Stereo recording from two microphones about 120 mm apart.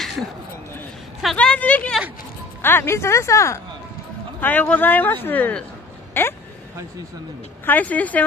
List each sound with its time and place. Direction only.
1.3 s a woman's voice: 10° left (ahead or behind)
7.6 s speech: 15° left (ahead or behind)